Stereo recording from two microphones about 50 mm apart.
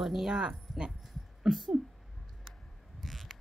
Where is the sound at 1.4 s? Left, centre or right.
Centre.